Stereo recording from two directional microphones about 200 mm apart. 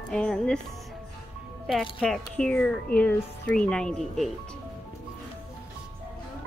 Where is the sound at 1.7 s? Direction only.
Centre (ahead or behind).